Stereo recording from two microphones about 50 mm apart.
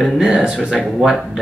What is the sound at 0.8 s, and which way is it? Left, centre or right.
Speech, centre.